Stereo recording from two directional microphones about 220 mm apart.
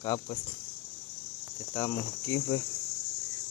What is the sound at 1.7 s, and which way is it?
Cricket, 15° left (ahead or behind).